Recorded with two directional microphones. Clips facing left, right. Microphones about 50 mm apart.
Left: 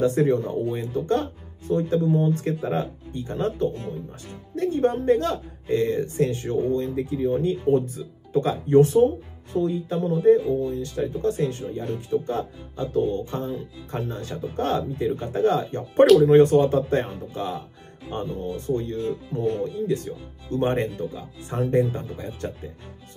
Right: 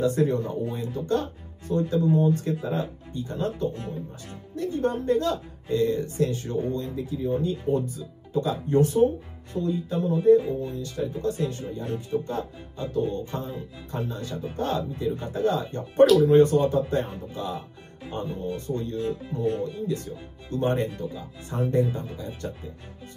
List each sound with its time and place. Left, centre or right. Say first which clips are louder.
0.0 s speech: left 3 dB; left
19.4 s speech: left 2 dB; left